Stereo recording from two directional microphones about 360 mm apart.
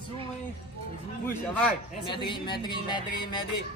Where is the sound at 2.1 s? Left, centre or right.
Centre.